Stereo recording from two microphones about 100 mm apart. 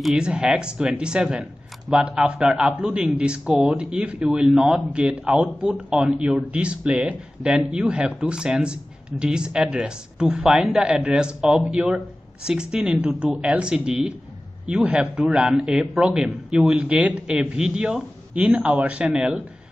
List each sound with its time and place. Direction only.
0.0 s speech: 5° right (ahead or behind)